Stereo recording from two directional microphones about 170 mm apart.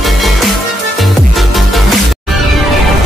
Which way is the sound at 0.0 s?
Centre (ahead or behind).